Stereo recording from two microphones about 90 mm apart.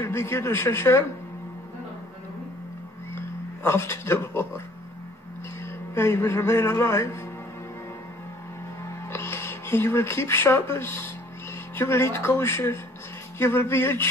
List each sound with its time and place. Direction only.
0.0 s a man's voice: 30° left (ahead or behind)
3.2 s speech: 30° left (ahead or behind)
5.9 s a man's voice: 30° left (ahead or behind)
9.1 s a man's voice: 30° left (ahead or behind)